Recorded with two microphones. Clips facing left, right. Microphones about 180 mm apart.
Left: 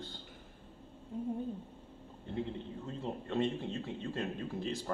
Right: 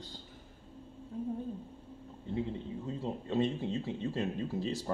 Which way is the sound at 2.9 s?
15° right (ahead or behind).